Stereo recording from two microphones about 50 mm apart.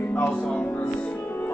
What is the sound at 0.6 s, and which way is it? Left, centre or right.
Music, left.